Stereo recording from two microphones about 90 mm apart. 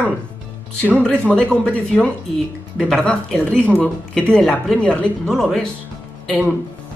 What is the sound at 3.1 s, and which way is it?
Speech, 5° left (ahead or behind).